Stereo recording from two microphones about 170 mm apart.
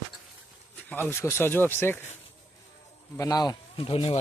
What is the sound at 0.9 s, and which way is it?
Speech, 15° left (ahead or behind).